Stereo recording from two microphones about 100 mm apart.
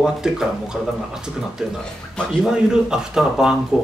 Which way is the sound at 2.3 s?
5° right (ahead or behind).